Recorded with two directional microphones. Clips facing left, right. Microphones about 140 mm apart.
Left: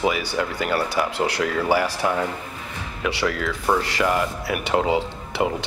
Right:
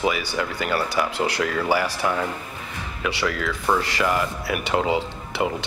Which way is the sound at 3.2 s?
30° left (ahead or behind).